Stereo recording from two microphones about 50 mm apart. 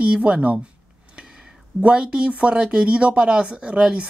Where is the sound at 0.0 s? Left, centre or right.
Right.